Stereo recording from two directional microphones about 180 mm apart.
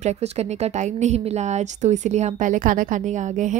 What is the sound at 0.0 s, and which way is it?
A woman's voice, 35° right (ahead or behind).